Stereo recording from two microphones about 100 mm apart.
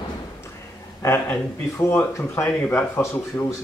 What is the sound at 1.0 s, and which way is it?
Speech, 30° left (ahead or behind).